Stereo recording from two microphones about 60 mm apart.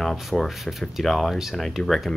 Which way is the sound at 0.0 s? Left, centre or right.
Centre.